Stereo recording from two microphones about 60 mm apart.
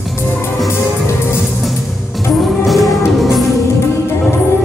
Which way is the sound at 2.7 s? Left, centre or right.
Centre.